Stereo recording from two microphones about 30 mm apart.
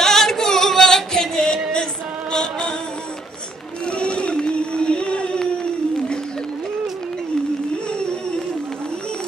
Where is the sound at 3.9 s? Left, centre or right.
Left.